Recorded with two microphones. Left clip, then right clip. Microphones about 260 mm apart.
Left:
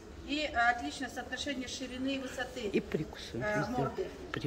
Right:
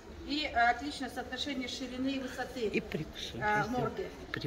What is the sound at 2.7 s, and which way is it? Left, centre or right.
Speech, centre.